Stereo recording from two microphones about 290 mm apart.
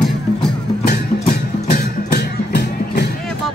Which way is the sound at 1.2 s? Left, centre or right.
Left.